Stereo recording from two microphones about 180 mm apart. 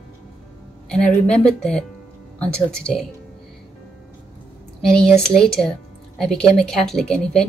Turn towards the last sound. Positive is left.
turn(degrees=5)  # may be behind; listen again after turning